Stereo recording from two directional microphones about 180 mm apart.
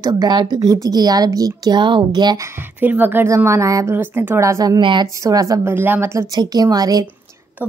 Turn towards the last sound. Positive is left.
turn(degrees=-20)  # may be behind; listen again after turning